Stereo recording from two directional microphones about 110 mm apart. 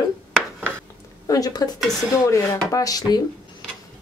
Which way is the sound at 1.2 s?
30° left (ahead or behind).